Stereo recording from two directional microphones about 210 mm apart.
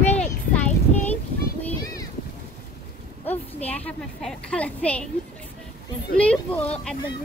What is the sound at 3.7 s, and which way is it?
A woman's voice, 5° left (ahead or behind).